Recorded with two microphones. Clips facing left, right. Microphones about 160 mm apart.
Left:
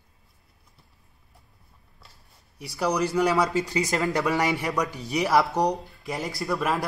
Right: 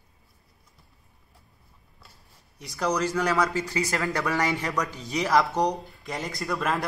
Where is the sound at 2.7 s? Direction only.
10° left (ahead or behind).